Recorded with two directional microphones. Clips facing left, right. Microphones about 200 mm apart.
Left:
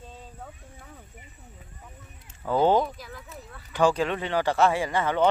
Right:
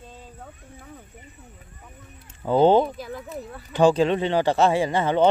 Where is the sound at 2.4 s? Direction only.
25° right (ahead or behind).